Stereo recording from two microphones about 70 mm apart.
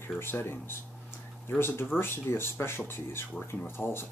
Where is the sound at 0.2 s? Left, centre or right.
Left.